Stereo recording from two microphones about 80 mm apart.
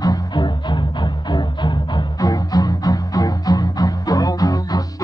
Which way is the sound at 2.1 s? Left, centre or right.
Left.